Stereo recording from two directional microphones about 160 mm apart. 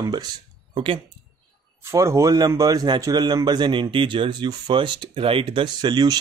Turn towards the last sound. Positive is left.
turn(degrees=-25)  # may be behind; listen again after turning